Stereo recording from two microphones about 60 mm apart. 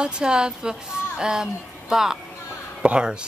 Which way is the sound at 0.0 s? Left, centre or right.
Centre.